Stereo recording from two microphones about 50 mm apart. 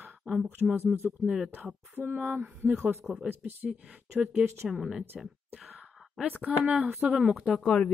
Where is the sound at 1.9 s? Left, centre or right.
Right.